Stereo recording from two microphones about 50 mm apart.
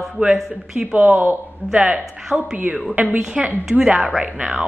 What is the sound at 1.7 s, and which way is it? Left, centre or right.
A woman's voice, centre.